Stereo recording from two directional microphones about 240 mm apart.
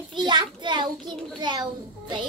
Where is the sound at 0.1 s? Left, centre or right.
Centre.